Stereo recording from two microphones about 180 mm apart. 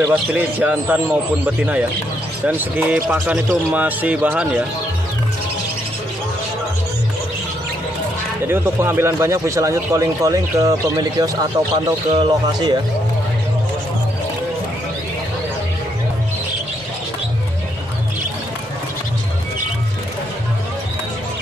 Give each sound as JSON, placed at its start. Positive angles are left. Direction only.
{"t": 0.1, "sound": "speech", "side_deg": -10}
{"t": 8.5, "sound": "speech", "side_deg": -10}